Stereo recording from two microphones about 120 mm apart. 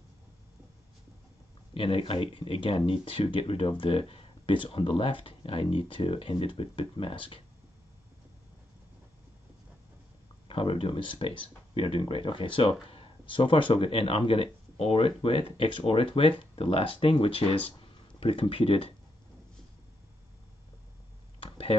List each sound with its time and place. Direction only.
1.7 s speech: 50° left (ahead or behind)
10.5 s speech: 50° left (ahead or behind)
21.4 s a sound: 50° left (ahead or behind)